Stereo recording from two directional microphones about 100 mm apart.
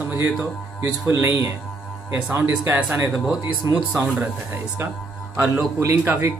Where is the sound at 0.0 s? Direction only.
20° right (ahead or behind).